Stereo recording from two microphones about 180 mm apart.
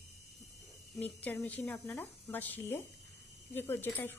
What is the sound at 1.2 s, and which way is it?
Speech, 10° left (ahead or behind).